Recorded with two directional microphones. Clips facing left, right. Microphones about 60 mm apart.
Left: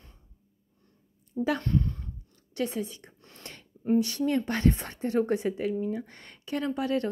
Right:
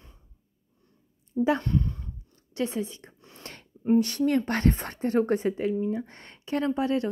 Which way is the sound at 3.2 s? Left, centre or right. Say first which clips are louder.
Right 2 dB; centre.